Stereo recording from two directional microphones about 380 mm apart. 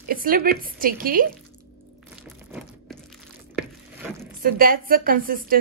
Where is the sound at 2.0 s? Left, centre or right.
Centre.